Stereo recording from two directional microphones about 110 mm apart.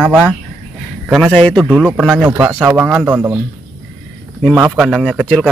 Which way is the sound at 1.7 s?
10° right (ahead or behind).